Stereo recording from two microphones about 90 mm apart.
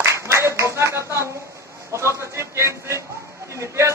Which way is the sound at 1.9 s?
35° right (ahead or behind).